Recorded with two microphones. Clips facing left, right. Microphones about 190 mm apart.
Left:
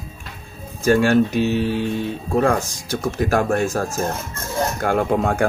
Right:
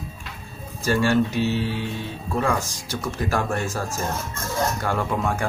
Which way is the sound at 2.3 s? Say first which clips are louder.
Left 5 dB; 55° left (ahead or behind).